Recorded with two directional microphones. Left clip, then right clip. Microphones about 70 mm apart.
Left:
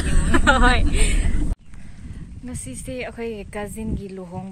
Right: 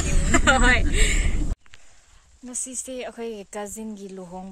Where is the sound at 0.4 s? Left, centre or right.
Right.